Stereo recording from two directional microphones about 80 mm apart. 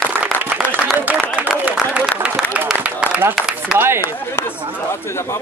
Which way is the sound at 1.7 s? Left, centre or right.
Centre.